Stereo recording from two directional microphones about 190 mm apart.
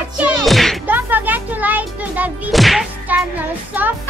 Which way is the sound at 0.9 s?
10° right (ahead or behind).